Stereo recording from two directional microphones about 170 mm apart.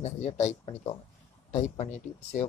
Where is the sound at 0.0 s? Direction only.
40° left (ahead or behind).